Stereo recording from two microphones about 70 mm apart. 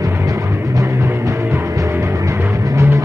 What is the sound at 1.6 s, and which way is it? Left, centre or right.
Music, right.